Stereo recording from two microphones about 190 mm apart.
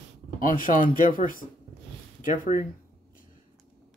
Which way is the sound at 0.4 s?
45° left (ahead or behind).